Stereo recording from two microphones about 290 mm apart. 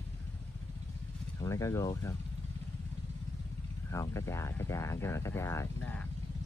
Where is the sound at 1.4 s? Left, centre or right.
Centre.